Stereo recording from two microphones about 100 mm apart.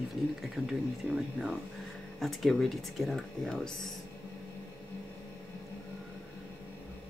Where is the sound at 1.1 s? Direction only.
5° right (ahead or behind).